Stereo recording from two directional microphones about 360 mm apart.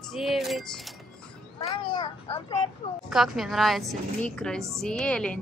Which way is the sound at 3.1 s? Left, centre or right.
Centre.